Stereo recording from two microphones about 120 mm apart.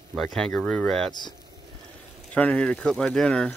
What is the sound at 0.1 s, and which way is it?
Speech, 5° left (ahead or behind).